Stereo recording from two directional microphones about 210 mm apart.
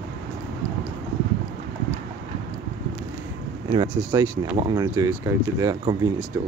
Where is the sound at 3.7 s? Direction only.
20° right (ahead or behind).